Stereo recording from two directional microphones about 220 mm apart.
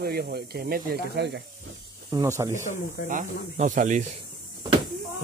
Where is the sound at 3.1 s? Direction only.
35° right (ahead or behind).